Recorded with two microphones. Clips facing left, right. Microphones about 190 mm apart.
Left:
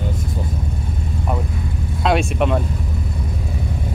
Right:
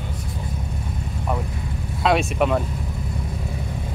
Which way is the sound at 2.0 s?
Centre (ahead or behind).